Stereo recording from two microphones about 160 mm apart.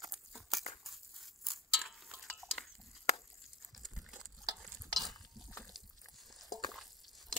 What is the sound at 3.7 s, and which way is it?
Gush, centre (ahead or behind).